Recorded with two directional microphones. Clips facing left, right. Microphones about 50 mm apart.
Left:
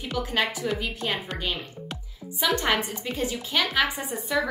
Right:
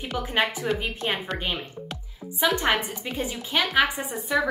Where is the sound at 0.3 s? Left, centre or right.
Right.